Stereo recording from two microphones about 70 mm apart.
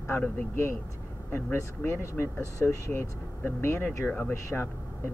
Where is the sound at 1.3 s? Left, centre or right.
Left.